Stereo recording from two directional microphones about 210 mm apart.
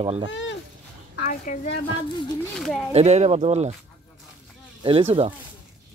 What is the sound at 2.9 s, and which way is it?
Speech, 30° right (ahead or behind).